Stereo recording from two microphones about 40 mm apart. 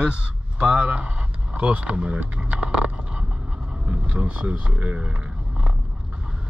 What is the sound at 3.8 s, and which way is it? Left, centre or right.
Speech, right.